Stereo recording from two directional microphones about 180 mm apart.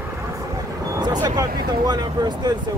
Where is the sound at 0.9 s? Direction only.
25° right (ahead or behind).